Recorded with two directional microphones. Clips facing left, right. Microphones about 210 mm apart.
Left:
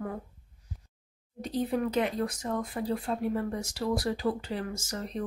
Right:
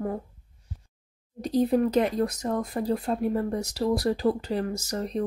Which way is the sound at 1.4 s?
40° right (ahead or behind).